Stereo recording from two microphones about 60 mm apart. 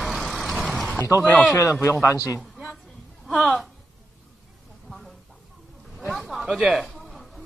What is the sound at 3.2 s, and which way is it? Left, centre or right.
Speech, centre.